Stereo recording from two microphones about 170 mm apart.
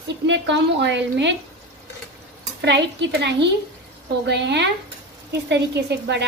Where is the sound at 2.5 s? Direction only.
90° right.